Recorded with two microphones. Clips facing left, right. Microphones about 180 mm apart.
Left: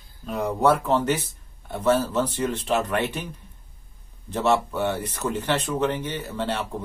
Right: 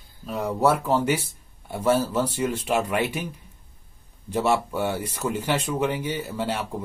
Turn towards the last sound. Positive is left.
turn(degrees=-10)  # may be behind; listen again after turning